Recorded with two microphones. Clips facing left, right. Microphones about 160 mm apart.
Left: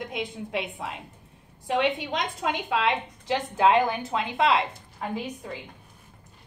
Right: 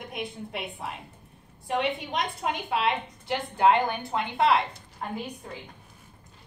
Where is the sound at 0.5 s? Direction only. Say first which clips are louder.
Left 4 dB; 90° left.